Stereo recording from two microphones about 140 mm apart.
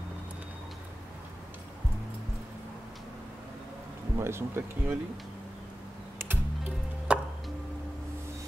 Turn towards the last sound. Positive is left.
turn(degrees=-10)  # may be behind; listen again after turning